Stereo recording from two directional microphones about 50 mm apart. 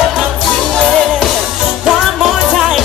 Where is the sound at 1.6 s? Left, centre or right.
Centre.